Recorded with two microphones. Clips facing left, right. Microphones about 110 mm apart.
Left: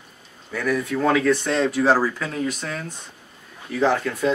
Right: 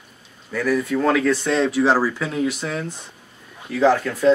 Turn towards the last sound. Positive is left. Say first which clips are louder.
# right 5 dB
turn(degrees=0)  # may be behind; listen again after turning